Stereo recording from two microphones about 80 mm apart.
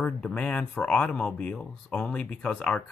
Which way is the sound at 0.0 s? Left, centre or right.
Centre.